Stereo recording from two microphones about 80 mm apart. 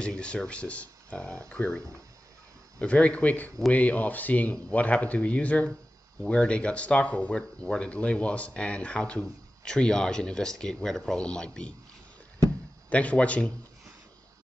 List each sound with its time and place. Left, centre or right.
0.0 s speech: centre
2.8 s speech: centre
12.9 s speech: centre